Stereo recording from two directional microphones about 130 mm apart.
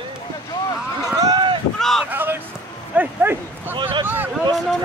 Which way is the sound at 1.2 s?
30° right (ahead or behind).